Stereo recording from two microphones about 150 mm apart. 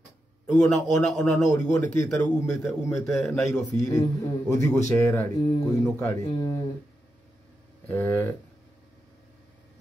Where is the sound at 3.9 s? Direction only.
25° left (ahead or behind).